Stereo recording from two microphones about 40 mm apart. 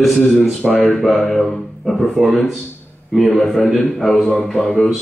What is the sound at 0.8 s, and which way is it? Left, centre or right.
A man's voice, centre.